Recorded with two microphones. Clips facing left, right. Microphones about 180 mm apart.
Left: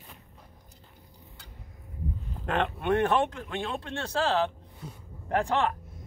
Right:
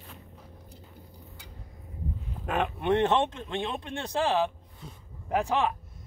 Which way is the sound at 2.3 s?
5° right (ahead or behind).